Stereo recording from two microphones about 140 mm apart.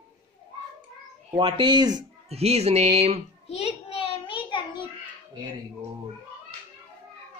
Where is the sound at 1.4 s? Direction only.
35° right (ahead or behind).